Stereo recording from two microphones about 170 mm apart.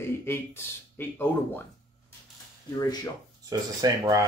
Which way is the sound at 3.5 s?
20° right (ahead or behind).